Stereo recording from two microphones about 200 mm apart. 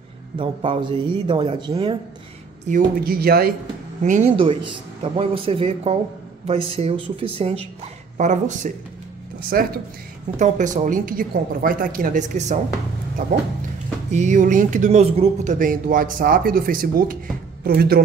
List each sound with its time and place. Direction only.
0.4 s speech: 25° right (ahead or behind)
2.7 s speech: 45° right (ahead or behind)
4.0 s speech: 40° right (ahead or behind)
4.4 s speech: 25° right (ahead or behind); by 18.0 s 50° right (ahead or behind)